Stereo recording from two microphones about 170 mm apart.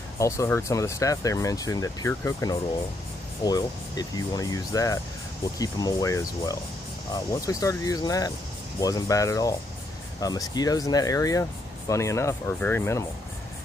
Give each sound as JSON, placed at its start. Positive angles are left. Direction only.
{"t": 0.2, "sound": "speech", "side_deg": 15}